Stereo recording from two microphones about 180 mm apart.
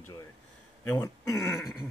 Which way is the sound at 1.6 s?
Centre (ahead or behind).